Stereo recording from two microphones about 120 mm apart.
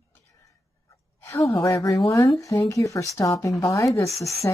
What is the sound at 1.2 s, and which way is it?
A woman's voice, 25° left (ahead or behind).